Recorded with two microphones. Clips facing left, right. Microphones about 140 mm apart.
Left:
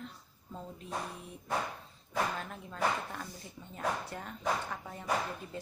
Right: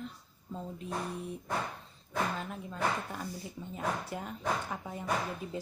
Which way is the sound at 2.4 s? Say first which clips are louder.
Even; 5° right (ahead or behind).